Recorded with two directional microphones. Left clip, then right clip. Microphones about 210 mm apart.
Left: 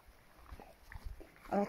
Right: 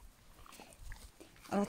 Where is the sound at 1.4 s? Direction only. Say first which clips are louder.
Left 1 dB; 15° left (ahead or behind).